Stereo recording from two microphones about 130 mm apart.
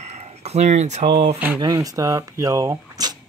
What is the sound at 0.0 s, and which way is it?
Speech, 55° right (ahead or behind).